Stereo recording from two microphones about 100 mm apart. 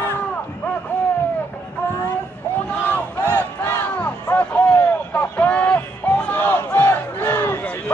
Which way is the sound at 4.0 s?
15° left (ahead or behind).